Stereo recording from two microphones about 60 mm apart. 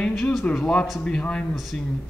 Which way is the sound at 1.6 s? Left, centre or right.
Centre.